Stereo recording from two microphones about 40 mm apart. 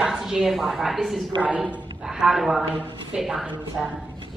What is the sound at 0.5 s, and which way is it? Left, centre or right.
A woman's voice, centre.